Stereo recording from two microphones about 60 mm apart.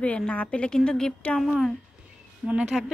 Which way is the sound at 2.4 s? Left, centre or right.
Centre.